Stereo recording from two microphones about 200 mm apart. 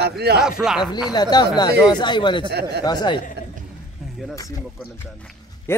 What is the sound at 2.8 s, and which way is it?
Speech, 20° left (ahead or behind).